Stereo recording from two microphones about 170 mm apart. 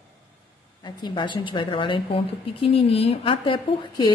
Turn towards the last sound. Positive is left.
turn(degrees=30)  # may be behind; listen again after turning